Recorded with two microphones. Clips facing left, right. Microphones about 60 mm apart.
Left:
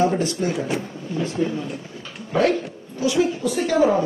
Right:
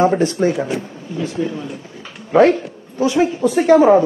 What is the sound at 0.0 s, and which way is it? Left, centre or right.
Speech, right.